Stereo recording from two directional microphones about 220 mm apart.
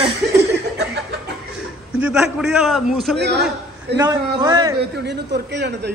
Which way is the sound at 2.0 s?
5° right (ahead or behind).